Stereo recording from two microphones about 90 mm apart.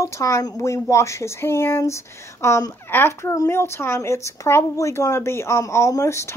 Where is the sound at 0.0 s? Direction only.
35° left (ahead or behind).